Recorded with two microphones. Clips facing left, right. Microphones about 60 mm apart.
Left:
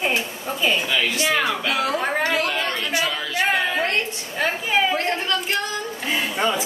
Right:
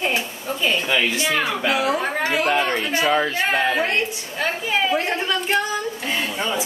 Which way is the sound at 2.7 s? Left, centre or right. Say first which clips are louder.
Right 5 dB; right.